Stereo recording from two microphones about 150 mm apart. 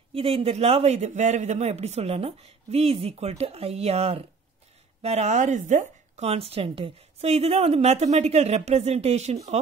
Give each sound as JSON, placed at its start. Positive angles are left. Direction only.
{"t": 0.1, "sound": "speech", "side_deg": -40}